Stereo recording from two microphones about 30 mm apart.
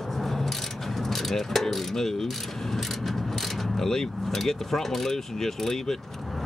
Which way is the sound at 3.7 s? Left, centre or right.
Centre.